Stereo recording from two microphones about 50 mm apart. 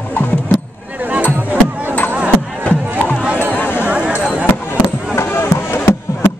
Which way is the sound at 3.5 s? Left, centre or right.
Left.